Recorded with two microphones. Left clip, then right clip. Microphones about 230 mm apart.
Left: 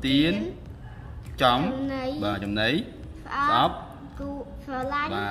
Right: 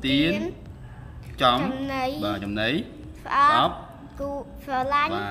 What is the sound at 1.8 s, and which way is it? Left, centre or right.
Speech, right.